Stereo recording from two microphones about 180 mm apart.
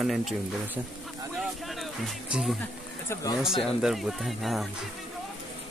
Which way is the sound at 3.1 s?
20° left (ahead or behind).